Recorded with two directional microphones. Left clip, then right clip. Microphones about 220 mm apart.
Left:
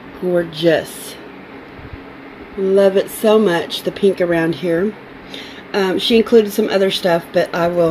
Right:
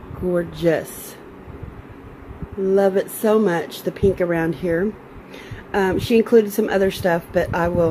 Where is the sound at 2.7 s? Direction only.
Centre (ahead or behind).